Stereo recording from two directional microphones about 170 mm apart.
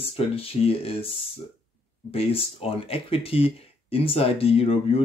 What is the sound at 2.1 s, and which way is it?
Speech, 35° left (ahead or behind).